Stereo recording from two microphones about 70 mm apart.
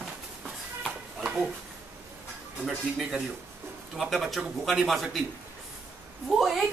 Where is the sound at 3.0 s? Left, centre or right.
Centre.